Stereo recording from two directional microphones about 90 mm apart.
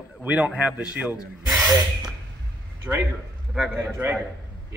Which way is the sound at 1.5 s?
Centre (ahead or behind).